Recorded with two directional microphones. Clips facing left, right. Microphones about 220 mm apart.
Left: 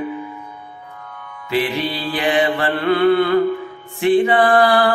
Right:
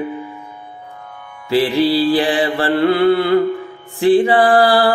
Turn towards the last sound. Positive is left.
turn(degrees=-30)  # may be behind; listen again after turning